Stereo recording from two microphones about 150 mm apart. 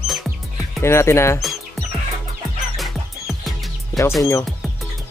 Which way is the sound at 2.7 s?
Centre (ahead or behind).